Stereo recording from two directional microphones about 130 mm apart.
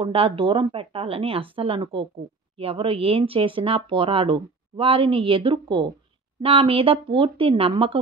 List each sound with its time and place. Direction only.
0.0 s speech: 45° right (ahead or behind)